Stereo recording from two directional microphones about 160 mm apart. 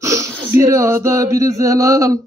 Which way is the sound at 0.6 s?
20° right (ahead or behind).